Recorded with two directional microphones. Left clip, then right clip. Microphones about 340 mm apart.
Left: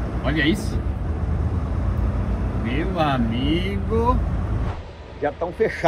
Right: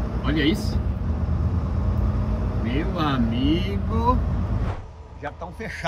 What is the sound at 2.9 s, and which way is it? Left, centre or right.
Speech, centre.